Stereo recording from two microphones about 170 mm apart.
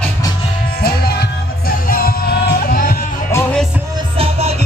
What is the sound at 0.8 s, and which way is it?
Music, 65° left (ahead or behind).